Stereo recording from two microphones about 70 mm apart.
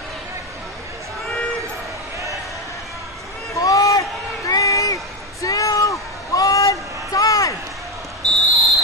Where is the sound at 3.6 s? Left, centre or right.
Left.